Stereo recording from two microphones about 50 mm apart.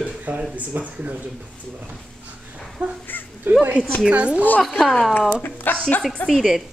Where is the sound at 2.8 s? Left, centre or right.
Right.